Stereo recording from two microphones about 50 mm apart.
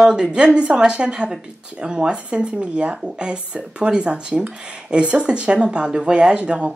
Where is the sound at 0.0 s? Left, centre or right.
Centre.